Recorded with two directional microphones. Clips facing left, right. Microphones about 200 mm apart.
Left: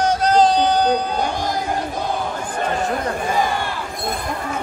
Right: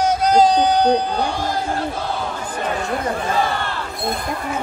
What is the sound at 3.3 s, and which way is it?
Speech, 15° left (ahead or behind).